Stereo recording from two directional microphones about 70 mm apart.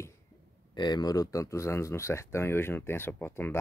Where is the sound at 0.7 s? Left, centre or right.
Left.